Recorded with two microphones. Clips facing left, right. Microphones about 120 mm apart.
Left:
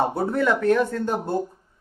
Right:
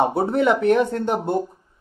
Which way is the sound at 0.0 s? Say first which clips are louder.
Right 3 dB; 20° right (ahead or behind).